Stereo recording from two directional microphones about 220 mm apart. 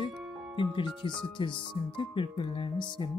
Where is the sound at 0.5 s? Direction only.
20° left (ahead or behind).